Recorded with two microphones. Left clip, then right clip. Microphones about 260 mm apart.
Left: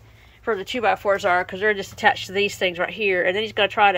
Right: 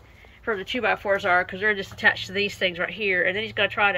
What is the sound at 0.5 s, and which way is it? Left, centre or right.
Speech, centre.